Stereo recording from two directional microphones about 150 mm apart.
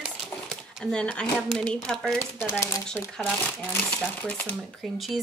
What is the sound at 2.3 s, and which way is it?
Speech, 15° left (ahead or behind).